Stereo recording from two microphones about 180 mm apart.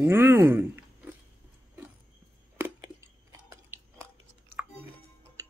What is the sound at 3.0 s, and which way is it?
Chewing, 15° right (ahead or behind).